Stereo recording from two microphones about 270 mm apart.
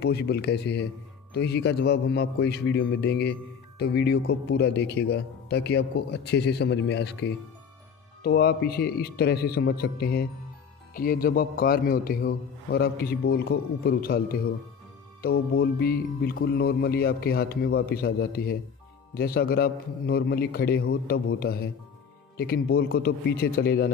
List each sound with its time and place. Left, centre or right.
0.0 s a man's voice: left